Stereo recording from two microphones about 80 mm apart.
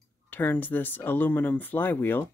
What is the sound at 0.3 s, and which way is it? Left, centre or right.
Speech, left.